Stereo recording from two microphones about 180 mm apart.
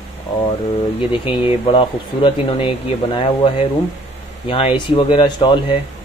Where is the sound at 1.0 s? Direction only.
30° left (ahead or behind).